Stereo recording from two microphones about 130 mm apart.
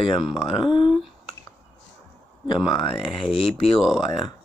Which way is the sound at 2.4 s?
35° left (ahead or behind).